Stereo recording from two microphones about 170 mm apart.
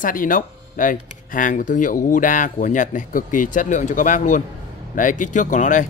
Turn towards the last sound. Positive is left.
turn(degrees=45)  # may be behind; listen again after turning